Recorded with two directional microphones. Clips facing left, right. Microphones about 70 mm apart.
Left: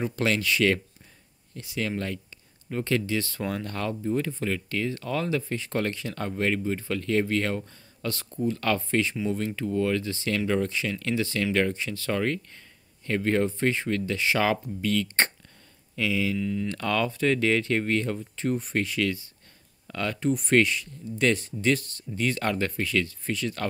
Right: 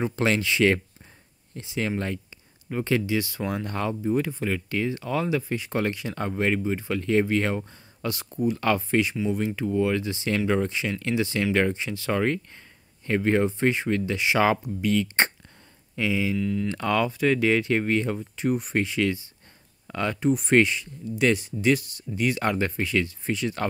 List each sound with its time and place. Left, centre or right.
0.0 s speech: right
2.7 s speech: centre
16.3 s speech: centre
16.6 s speech: right
21.2 s speech: centre